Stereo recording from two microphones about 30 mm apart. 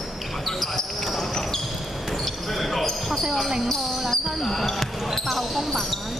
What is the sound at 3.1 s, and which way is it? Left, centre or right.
Basketball bounce, centre.